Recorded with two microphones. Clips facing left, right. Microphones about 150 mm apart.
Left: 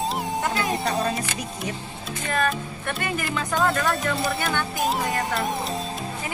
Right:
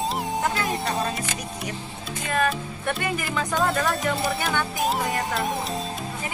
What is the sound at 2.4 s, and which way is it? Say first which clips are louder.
Speech: right 1 dB; 5° right (ahead or behind).